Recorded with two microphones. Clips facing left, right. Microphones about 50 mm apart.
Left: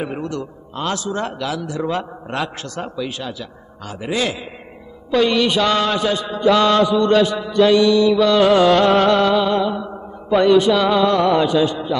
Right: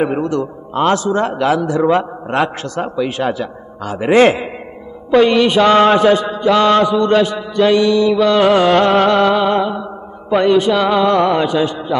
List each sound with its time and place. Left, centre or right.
0.0 s a man's voice: right
3.2 s a man's voice: right
5.1 s mantra: right
10.3 s mantra: right